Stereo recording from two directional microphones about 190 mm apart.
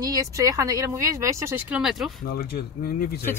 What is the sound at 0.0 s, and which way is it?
Speech, 20° right (ahead or behind).